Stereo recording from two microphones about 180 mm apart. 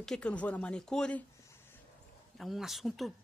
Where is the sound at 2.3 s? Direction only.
Centre (ahead or behind).